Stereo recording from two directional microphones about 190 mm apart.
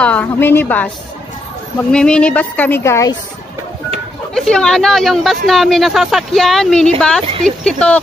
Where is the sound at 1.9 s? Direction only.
5° left (ahead or behind).